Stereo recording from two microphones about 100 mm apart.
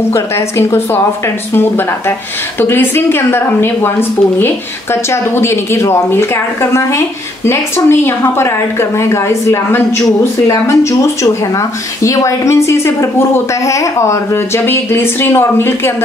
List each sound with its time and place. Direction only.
0.1 s a woman's voice: 25° left (ahead or behind)